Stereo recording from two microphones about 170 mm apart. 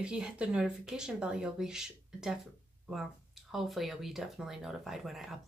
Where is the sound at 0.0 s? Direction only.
5° right (ahead or behind).